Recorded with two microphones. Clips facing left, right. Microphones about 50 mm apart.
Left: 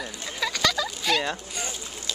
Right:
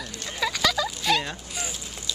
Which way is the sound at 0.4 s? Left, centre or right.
Centre.